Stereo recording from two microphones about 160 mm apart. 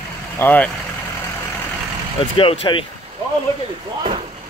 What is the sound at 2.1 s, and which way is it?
Speech, 35° left (ahead or behind).